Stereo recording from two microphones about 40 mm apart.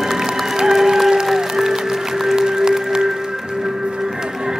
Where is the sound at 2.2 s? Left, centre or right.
Centre.